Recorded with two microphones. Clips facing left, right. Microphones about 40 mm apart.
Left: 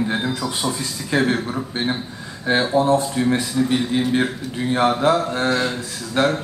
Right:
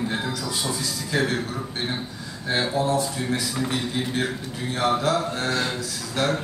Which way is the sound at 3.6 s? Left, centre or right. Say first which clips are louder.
Left 7 dB; left.